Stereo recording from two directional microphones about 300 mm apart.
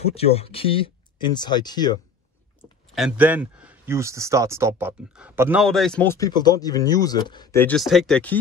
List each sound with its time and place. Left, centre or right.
0.1 s speech: centre
2.6 s speech: centre